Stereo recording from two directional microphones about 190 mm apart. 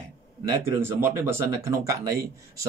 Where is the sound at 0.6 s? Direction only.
15° right (ahead or behind).